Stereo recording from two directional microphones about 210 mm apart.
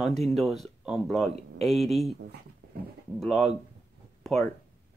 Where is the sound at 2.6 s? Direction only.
50° right (ahead or behind).